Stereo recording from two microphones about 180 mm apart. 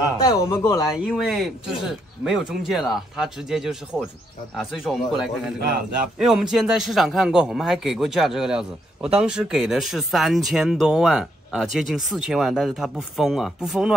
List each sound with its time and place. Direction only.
0.2 s speech: 20° left (ahead or behind)
0.9 s a man's voice: 5° right (ahead or behind)